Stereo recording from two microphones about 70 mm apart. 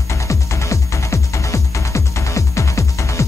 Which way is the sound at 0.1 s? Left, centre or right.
Left.